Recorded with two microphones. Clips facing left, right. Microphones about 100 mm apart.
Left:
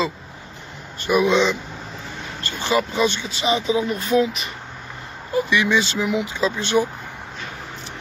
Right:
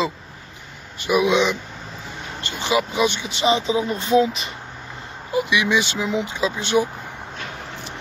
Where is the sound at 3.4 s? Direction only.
30° right (ahead or behind).